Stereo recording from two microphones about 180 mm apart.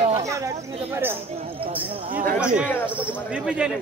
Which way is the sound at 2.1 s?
50° right (ahead or behind).